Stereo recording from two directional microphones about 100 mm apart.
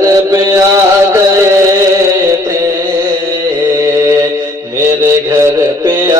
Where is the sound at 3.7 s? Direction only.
30° right (ahead or behind).